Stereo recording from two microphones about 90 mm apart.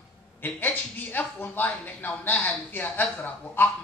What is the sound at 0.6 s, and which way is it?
A woman's voice, 20° left (ahead or behind).